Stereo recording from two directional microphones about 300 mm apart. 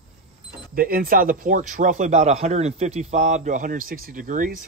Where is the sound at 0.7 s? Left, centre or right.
Right.